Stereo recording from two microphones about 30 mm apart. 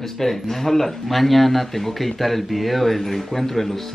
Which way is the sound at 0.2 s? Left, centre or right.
Centre.